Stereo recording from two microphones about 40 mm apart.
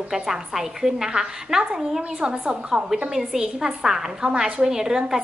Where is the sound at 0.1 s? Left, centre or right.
Centre.